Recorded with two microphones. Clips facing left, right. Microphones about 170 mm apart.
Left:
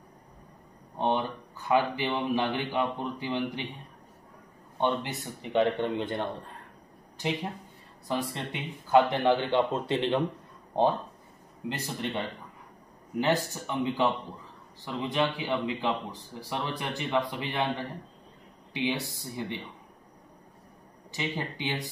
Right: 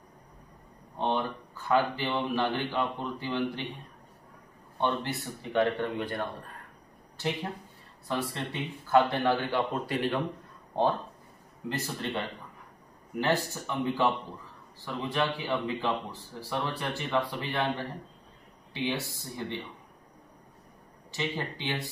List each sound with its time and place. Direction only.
0.9 s speech: 15° left (ahead or behind)
4.7 s speech: 15° left (ahead or behind)
8.1 s speech: 15° left (ahead or behind)
11.7 s speech: 15° left (ahead or behind)
13.2 s speech: 15° left (ahead or behind)
21.1 s speech: 15° left (ahead or behind)